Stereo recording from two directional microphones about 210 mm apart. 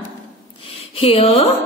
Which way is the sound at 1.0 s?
30° left (ahead or behind).